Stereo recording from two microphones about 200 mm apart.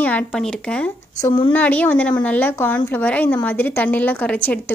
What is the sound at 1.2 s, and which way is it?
Speech, 20° left (ahead or behind).